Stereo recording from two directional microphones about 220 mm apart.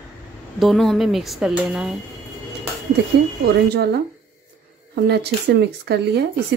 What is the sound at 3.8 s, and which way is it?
Speech, 50° right (ahead or behind).